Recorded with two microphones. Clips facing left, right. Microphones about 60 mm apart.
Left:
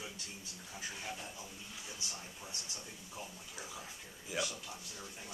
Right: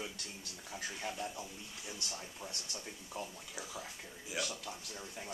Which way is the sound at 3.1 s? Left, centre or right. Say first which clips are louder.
Right 5 dB; right.